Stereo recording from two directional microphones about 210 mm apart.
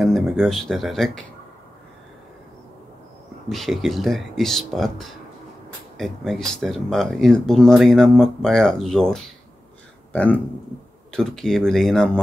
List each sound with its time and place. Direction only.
0.0 s speech: centre (ahead or behind)
3.4 s speech: centre (ahead or behind)